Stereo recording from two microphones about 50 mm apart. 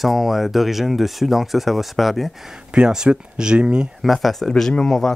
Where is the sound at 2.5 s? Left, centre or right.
Centre.